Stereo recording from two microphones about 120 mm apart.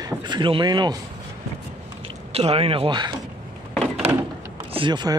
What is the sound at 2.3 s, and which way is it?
Speech, 55° right (ahead or behind).